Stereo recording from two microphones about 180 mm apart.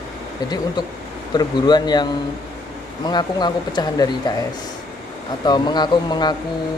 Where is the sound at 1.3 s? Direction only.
25° left (ahead or behind).